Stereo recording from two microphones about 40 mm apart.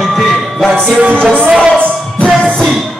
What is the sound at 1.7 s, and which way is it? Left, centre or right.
Music, left.